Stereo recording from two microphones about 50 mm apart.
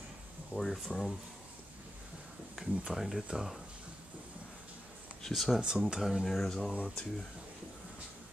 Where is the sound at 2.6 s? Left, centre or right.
Centre.